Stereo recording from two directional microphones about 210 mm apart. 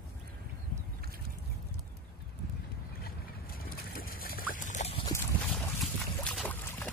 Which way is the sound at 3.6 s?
45° left (ahead or behind).